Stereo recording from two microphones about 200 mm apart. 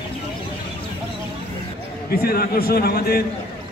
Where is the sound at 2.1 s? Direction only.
50° left (ahead or behind).